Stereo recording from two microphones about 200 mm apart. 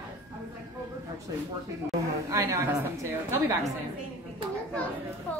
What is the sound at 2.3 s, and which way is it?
Speech, 10° right (ahead or behind).